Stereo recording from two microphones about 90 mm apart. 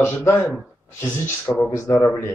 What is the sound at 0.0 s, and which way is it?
Speech, 30° left (ahead or behind).